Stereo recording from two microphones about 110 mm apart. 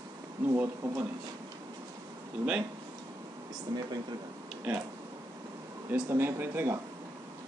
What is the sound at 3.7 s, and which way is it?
Speech, 35° right (ahead or behind).